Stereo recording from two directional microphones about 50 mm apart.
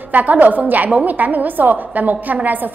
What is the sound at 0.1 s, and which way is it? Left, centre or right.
A woman's voice, right.